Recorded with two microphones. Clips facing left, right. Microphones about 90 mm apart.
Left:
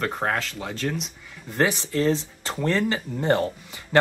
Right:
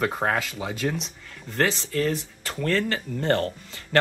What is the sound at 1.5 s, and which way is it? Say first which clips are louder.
Speech: left 1 dB; 15° left (ahead or behind).